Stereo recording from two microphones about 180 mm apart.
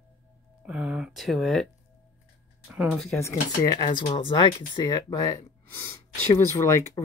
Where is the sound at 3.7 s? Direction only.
25° left (ahead or behind).